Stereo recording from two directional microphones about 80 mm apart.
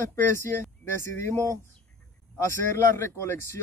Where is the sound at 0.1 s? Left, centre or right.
Left.